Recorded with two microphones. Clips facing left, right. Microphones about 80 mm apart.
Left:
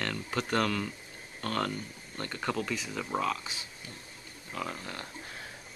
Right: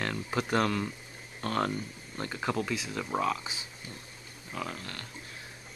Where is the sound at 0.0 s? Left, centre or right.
Centre.